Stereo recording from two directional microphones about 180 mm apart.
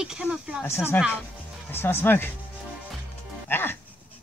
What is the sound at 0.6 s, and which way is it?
Speech, 15° left (ahead or behind).